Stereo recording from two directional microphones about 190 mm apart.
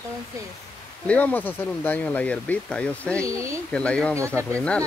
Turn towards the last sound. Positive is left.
turn(degrees=5)  # may be behind; listen again after turning